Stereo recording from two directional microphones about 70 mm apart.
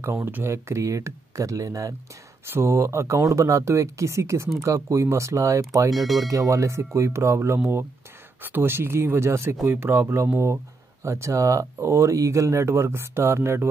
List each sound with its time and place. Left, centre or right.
0.0 s speech: right
2.4 s speech: right
5.9 s speech: centre
6.2 s speech: right